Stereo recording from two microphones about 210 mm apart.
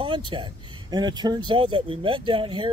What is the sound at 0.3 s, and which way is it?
Speech, 20° right (ahead or behind).